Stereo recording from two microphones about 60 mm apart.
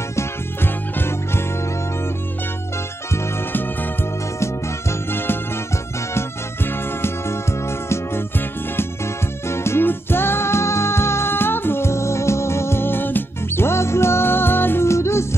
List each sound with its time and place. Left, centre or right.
0.9 s music: left
5.1 s music: left
9.5 s music: left
14.9 s music: left